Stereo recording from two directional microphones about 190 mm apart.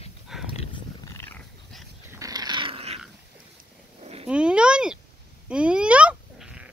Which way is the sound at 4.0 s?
30° right (ahead or behind).